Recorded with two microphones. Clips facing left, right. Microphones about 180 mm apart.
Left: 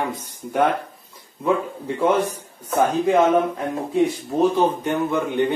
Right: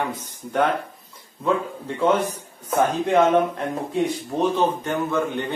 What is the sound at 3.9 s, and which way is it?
Speech, 5° left (ahead or behind).